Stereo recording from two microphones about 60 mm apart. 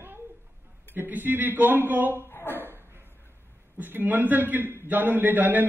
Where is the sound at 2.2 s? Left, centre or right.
Left.